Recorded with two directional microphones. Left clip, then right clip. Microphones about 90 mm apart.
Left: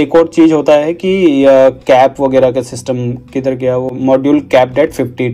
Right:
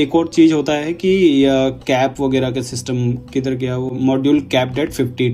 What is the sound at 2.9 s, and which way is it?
Speech, 45° left (ahead or behind).